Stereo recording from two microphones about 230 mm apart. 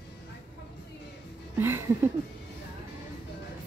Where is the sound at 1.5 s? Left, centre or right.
Centre.